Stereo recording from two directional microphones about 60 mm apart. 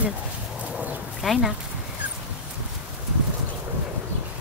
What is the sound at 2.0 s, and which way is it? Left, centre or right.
Dog, right.